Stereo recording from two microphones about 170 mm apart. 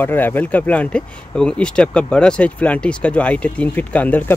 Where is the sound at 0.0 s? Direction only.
10° left (ahead or behind).